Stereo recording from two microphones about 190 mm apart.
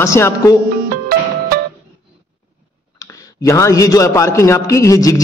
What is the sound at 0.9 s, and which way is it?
Music, 50° right (ahead or behind).